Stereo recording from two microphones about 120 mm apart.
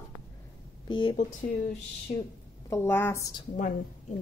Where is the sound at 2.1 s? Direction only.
75° left (ahead or behind).